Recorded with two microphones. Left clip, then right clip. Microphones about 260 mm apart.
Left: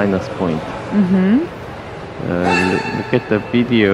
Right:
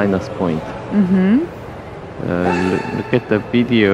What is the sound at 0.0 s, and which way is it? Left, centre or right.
Speech, centre.